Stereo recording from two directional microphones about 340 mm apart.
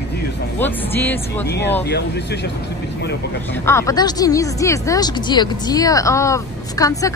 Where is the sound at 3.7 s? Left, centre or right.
Centre.